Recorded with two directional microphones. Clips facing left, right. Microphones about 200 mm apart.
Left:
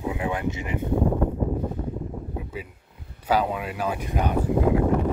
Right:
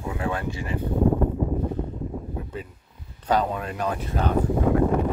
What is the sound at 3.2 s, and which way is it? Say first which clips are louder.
Speech: even; 10° left (ahead or behind).